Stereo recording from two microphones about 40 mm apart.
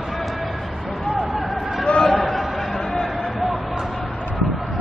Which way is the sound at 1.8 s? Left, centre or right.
Left.